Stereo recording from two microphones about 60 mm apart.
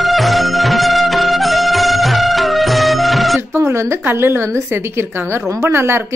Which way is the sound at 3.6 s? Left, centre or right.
Right.